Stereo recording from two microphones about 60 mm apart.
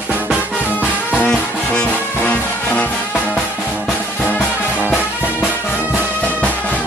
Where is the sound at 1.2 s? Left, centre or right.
Centre.